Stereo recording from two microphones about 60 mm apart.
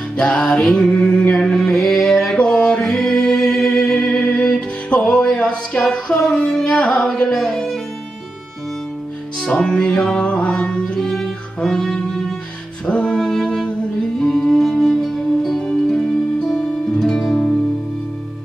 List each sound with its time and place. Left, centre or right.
0.2 s music: centre
6.2 s carnatic music: centre
7.2 s music: centre
9.4 s music: centre